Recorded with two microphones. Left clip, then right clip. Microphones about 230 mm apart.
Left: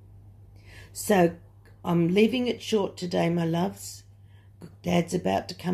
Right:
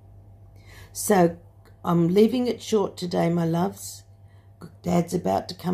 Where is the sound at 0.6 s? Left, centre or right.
Centre.